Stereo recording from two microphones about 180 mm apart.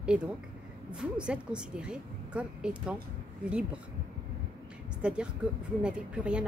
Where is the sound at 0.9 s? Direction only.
5° right (ahead or behind).